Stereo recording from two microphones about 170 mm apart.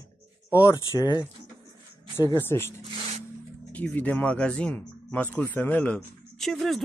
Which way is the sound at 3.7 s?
10° left (ahead or behind).